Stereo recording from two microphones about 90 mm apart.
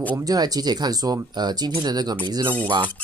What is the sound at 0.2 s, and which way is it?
Speech, 45° right (ahead or behind).